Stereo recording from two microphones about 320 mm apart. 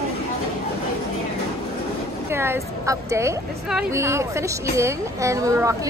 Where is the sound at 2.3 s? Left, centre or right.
Centre.